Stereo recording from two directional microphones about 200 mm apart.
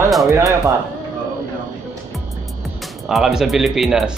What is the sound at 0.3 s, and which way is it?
Speech, 15° right (ahead or behind).